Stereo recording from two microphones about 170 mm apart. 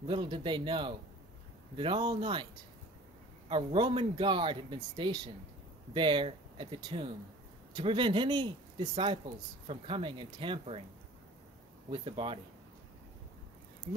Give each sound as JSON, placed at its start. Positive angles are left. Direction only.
{"t": 0.0, "sound": "speech", "side_deg": -30}
{"t": 3.4, "sound": "speech", "side_deg": -30}
{"t": 11.9, "sound": "speech", "side_deg": -30}